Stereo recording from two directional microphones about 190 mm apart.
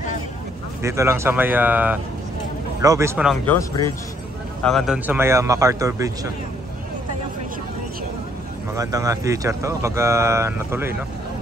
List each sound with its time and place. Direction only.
0.8 s speech: 15° right (ahead or behind)
3.4 s speech: 15° left (ahead or behind)
4.6 s speech: centre (ahead or behind); by 6.3 s 15° right (ahead or behind)
8.7 s speech: 15° right (ahead or behind)